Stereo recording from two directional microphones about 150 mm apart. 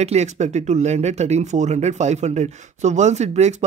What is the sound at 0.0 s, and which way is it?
Speech, 45° right (ahead or behind).